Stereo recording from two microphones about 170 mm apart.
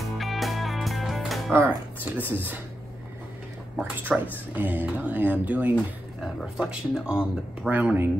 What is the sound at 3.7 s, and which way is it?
Speech, 10° right (ahead or behind).